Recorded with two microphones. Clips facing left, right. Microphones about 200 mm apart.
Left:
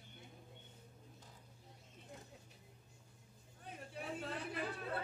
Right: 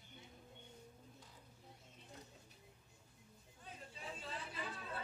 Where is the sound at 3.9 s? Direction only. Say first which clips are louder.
Left 6 dB; 60° left (ahead or behind).